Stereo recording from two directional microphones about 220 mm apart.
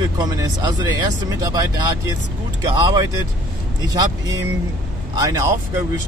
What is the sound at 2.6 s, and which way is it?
Speech, 20° right (ahead or behind).